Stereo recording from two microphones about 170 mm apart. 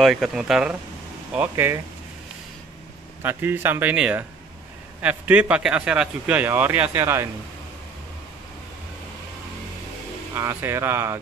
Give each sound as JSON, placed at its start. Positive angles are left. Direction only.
{"t": 0.0, "sound": "speech", "side_deg": 0}
{"t": 3.2, "sound": "speech", "side_deg": -10}
{"t": 10.3, "sound": "speech", "side_deg": -15}